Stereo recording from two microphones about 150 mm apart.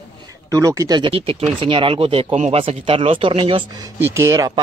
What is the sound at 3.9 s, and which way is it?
Speech, 15° right (ahead or behind).